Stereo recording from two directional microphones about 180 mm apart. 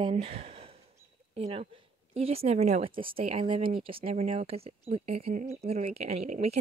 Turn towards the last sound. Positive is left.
turn(degrees=-35)  # may be behind; listen again after turning